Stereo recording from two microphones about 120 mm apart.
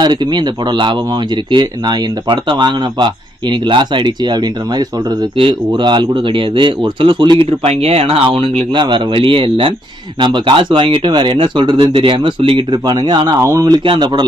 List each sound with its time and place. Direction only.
0.0 s speech: 35° right (ahead or behind)
7.6 s speech: 60° right (ahead or behind); by 13.7 s 30° right (ahead or behind)
13.8 s speech: 40° right (ahead or behind)